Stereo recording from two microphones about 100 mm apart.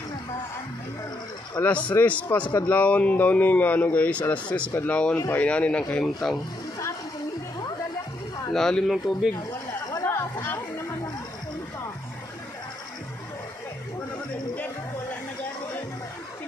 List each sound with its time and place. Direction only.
1.6 s speech: 15° left (ahead or behind)
8.5 s speech: 5° left (ahead or behind)
9.5 s chatter: 40° left (ahead or behind)